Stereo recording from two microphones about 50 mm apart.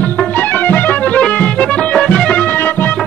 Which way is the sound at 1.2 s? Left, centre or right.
Left.